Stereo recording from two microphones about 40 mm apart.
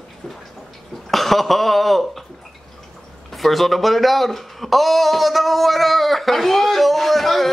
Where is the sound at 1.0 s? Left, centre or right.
Centre.